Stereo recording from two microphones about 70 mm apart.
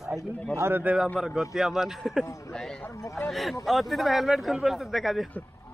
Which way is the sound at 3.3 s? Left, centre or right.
Centre.